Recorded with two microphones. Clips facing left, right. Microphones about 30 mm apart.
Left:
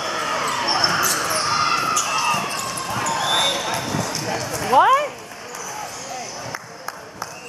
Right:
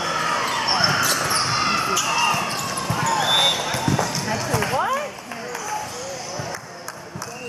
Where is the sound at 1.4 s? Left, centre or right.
Centre.